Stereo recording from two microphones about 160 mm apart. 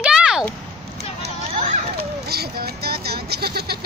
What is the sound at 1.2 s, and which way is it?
Hubbub, 40° right (ahead or behind).